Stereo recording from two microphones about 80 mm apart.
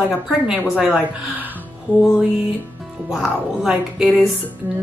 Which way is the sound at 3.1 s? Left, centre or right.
Centre.